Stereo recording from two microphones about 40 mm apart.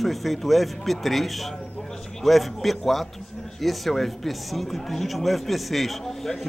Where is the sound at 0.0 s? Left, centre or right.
Centre.